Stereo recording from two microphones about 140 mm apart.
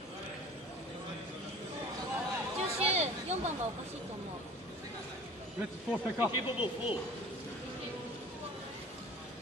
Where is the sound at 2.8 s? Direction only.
50° right (ahead or behind).